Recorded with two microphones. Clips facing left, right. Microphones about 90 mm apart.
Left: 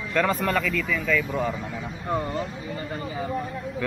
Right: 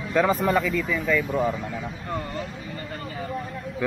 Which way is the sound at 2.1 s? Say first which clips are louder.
Left 5 dB; 15° left (ahead or behind).